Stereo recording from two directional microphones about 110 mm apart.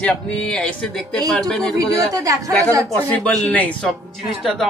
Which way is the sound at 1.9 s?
30° right (ahead or behind).